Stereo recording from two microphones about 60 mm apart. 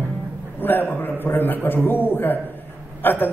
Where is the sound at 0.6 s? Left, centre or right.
Left.